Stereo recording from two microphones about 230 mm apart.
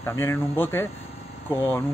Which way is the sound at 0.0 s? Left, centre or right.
Centre.